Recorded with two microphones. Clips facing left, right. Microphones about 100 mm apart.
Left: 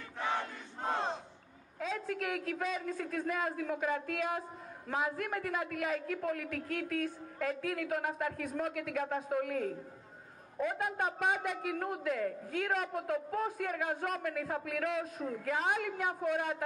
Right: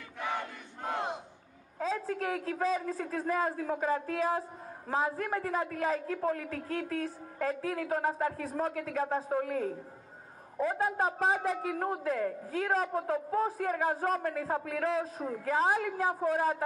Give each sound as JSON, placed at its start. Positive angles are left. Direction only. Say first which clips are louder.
{"t": 0.3, "sound": "crowd", "louder": "even", "side_deg": 20}
{"t": 1.8, "sound": "a man's voice", "louder": "right 4 dB", "side_deg": -35}